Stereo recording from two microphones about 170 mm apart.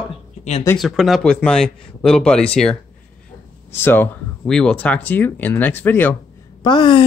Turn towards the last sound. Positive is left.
turn(degrees=30)  # may be behind; listen again after turning